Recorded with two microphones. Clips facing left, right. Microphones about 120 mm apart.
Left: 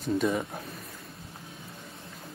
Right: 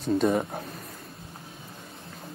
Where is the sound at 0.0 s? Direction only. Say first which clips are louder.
Right 4 dB; 35° right (ahead or behind).